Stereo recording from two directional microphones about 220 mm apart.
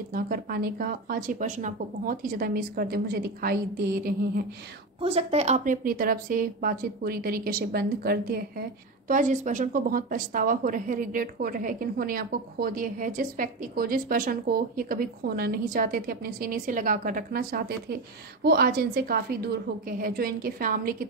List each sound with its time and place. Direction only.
0.1 s a woman's voice: 40° right (ahead or behind)
5.0 s a woman's voice: 30° right (ahead or behind)